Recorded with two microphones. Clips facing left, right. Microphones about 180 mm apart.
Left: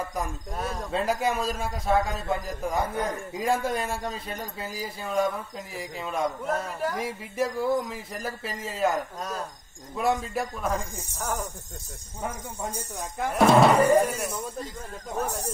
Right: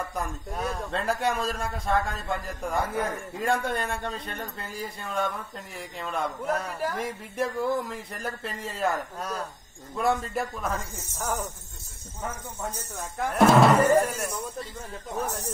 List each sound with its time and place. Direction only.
0.1 s speech: centre (ahead or behind)
10.7 s speech: 15° left (ahead or behind)
13.3 s speech: centre (ahead or behind)
15.1 s speech: 10° left (ahead or behind)